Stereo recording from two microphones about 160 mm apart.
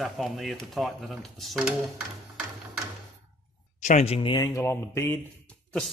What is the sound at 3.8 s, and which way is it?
Speech, 45° left (ahead or behind).